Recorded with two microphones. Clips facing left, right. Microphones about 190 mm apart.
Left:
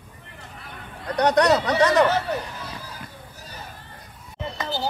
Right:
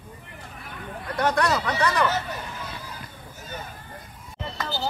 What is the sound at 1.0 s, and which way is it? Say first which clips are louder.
Speech: left 5 dB; 20° left (ahead or behind).